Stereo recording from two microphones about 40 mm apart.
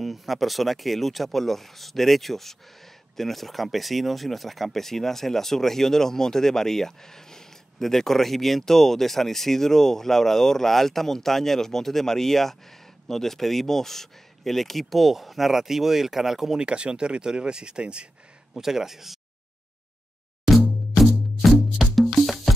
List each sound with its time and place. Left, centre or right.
0.0 s speech: centre
16.5 s speech: right
18.5 s speech: centre
21.5 s music: centre